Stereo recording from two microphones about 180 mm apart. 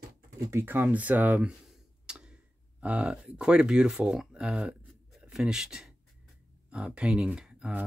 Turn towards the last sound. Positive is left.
turn(degrees=-5)  # may be behind; listen again after turning